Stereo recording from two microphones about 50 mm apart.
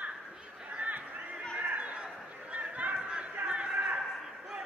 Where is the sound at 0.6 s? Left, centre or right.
Right.